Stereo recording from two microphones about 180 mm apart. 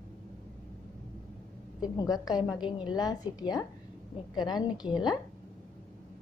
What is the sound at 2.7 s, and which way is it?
A woman's voice, 25° left (ahead or behind).